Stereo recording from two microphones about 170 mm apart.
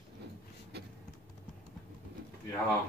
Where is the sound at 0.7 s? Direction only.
75° right (ahead or behind).